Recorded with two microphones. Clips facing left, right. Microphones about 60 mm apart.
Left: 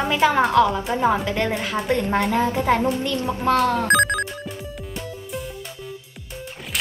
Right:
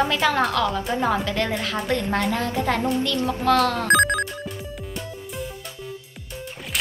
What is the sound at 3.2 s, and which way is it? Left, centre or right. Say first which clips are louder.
Speech: left 1 dB; centre.